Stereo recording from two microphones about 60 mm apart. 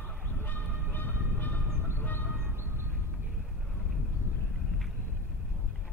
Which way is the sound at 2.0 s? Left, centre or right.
Left.